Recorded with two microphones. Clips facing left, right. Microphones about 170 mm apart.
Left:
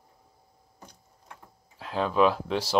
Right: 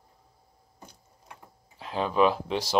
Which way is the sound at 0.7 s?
20° right (ahead or behind).